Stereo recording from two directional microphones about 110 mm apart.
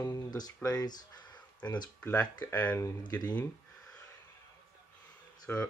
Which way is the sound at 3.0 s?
35° left (ahead or behind).